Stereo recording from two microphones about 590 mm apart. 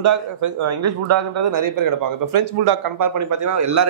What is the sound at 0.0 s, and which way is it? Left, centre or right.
A man's voice, right.